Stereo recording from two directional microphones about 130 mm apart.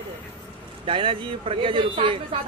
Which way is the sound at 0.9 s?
40° right (ahead or behind).